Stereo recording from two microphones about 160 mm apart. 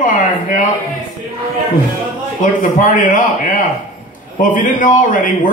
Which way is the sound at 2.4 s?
55° left (ahead or behind).